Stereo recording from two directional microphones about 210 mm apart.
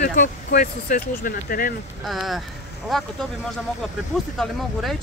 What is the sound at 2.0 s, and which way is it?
Speech, centre (ahead or behind).